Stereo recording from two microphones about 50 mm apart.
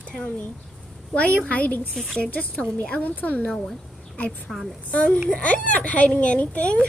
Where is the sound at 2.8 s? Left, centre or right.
Left.